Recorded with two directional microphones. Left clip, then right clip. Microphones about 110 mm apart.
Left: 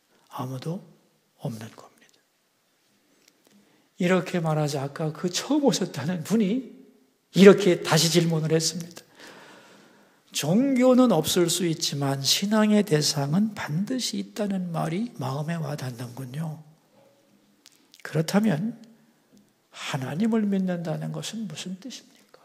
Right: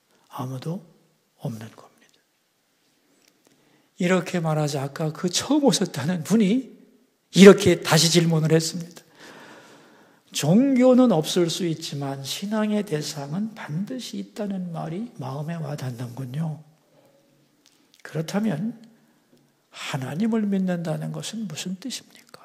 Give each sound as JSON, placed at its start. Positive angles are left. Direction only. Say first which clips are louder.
{"t": 0.3, "sound": "speech", "louder": "right 1 dB", "side_deg": -5}
{"t": 4.0, "sound": "speech", "louder": "right 1 dB", "side_deg": -5}
{"t": 8.6, "sound": "a sound", "louder": "left 2 dB", "side_deg": 0}
{"t": 9.4, "sound": "a man's voice", "louder": "right 3 dB", "side_deg": -30}
{"t": 12.2, "sound": "speech", "louder": "left 6 dB", "side_deg": 25}
{"t": 15.7, "sound": "speech", "louder": "right 1 dB", "side_deg": -15}
{"t": 17.6, "sound": "a sound", "louder": "left 3 dB", "side_deg": 5}
{"t": 19.7, "sound": "speech", "louder": "right 1 dB", "side_deg": 0}
{"t": 21.5, "sound": "speech", "louder": "right 3 dB", "side_deg": -15}
{"t": 21.7, "sound": "speech", "louder": "right 6 dB", "side_deg": -30}